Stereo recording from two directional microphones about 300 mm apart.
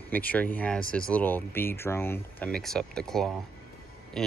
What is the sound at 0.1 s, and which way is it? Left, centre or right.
Speech, centre.